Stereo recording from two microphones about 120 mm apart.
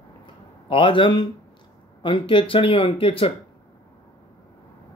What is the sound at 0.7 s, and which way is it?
Speech, 45° left (ahead or behind).